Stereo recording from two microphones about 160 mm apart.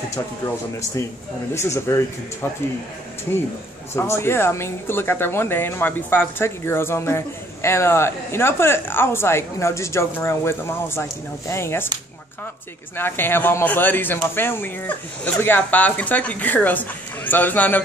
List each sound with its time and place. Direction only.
1.5 s a woman's voice: 15° left (ahead or behind)
3.9 s a woman's voice: 15° left (ahead or behind)
12.9 s a woman's voice: 15° left (ahead or behind)